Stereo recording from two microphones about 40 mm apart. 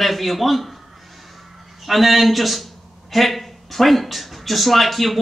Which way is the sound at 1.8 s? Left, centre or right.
Centre.